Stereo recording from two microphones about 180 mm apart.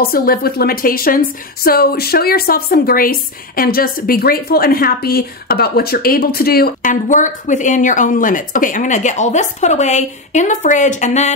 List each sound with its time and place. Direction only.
0.0 s a woman's voice: 55° left (ahead or behind)